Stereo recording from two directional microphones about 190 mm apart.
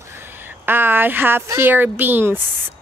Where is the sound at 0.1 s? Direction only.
10° right (ahead or behind).